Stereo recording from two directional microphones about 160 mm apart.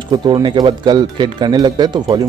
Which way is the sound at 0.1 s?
30° right (ahead or behind).